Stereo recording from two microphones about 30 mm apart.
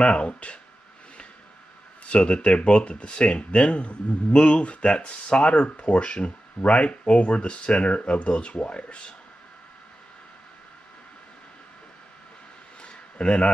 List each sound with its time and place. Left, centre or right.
0.0 s speech: left
2.0 s speech: left
12.8 s a sound: left